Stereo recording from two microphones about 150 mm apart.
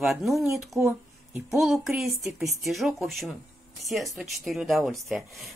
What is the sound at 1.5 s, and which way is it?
Speech, centre (ahead or behind).